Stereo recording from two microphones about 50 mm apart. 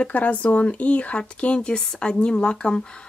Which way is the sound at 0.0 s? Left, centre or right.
Left.